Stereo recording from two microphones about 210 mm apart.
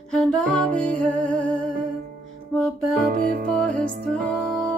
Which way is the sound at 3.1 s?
45° right (ahead or behind).